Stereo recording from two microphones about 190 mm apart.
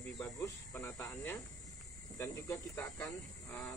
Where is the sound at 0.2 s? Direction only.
10° left (ahead or behind).